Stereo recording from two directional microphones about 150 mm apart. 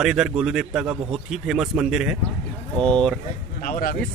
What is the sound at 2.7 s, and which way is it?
Speech, 5° left (ahead or behind).